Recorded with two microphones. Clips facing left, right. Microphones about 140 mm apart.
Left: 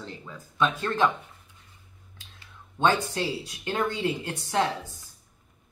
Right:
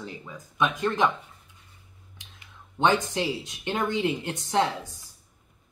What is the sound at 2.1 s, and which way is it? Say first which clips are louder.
Speech: even; 20° right (ahead or behind).